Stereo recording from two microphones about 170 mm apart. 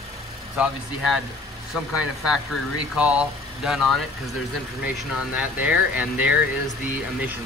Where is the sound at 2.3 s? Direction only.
5° right (ahead or behind).